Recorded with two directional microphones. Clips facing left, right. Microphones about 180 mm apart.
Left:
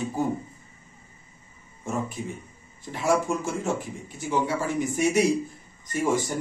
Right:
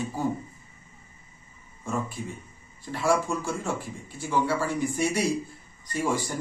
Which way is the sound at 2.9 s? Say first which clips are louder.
Left 1 dB; 20° left (ahead or behind).